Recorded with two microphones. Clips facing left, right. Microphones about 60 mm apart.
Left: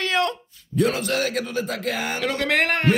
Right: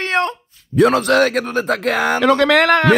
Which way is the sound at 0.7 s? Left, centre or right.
Right.